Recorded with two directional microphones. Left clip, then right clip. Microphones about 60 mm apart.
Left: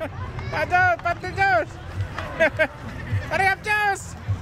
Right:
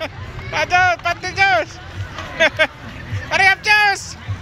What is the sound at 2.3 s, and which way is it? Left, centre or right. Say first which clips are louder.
Speech: right 5 dB; centre.